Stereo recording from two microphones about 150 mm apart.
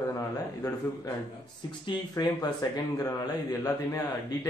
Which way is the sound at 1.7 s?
30° left (ahead or behind).